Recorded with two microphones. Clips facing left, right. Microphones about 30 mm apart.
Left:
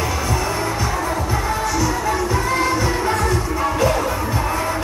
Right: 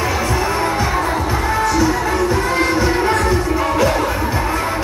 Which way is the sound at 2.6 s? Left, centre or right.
Right.